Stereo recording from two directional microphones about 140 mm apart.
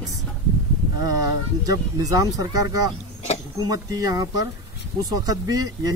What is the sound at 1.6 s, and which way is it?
Speech, 25° right (ahead or behind).